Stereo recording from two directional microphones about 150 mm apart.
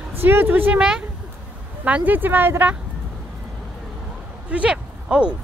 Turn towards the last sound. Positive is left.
turn(degrees=-5)  # may be behind; listen again after turning